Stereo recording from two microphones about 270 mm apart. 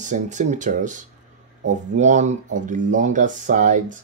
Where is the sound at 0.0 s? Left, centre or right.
Right.